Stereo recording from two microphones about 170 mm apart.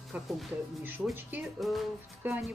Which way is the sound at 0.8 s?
10° right (ahead or behind).